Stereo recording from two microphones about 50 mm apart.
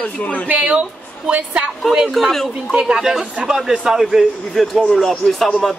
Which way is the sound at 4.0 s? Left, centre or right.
Centre.